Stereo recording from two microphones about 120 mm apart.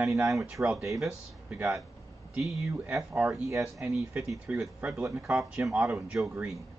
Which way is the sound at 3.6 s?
20° right (ahead or behind).